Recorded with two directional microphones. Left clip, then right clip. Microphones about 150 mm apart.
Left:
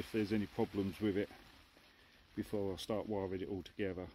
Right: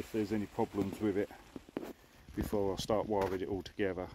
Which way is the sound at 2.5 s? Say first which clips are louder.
Right 7 dB; 15° left (ahead or behind).